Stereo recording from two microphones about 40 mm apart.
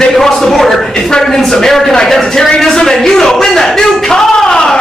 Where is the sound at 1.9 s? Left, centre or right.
Centre.